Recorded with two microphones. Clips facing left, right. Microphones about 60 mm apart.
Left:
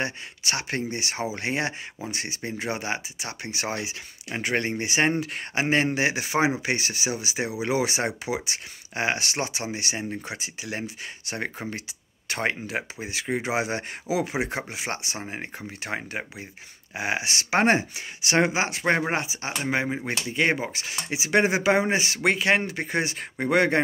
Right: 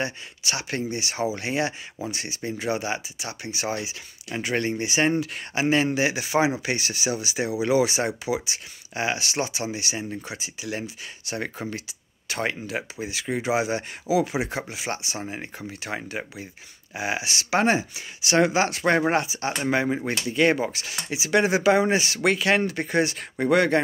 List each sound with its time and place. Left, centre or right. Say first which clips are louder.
0.0 s speech: even; left; by 20.8 s centre
20.8 s speech: even; left